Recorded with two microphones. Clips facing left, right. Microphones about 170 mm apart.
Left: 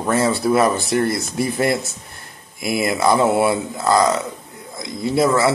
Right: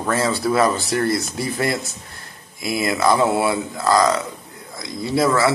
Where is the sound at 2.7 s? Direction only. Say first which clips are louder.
Left 1 dB; 25° left (ahead or behind).